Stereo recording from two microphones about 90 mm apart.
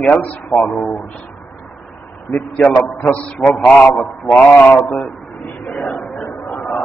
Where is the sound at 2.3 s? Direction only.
15° left (ahead or behind).